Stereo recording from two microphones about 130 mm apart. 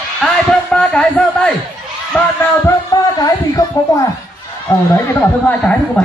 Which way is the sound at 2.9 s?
30° left (ahead or behind).